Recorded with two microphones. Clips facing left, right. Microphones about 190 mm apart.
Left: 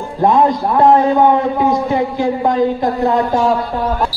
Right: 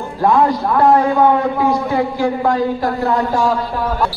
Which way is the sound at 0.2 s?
20° left (ahead or behind).